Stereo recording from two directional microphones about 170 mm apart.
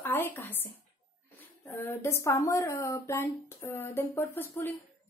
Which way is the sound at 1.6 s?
10° left (ahead or behind).